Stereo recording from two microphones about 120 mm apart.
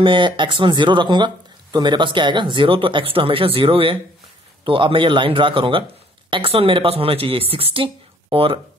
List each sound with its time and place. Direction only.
0.0 s speech: 45° right (ahead or behind)